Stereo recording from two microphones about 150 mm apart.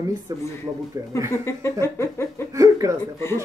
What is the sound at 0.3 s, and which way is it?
Speech, 25° right (ahead or behind).